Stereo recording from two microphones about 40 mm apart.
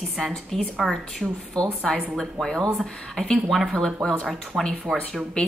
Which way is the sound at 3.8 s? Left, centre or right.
Centre.